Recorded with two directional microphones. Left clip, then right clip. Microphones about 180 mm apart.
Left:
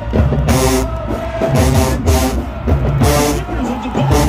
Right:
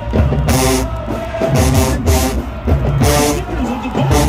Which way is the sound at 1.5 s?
35° right (ahead or behind).